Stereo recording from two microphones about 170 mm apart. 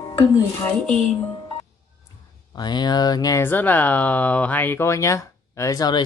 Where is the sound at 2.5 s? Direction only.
25° left (ahead or behind).